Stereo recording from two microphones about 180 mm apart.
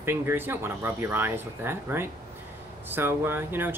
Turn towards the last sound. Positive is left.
turn(degrees=-10)  # may be behind; listen again after turning